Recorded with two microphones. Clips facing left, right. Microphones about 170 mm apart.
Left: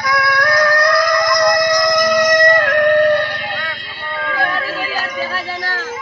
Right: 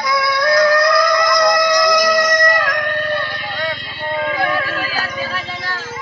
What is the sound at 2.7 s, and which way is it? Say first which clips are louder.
Music: left 9 dB; 70° left (ahead or behind).